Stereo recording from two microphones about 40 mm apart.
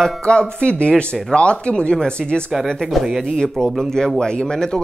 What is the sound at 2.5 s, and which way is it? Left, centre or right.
Speech, centre.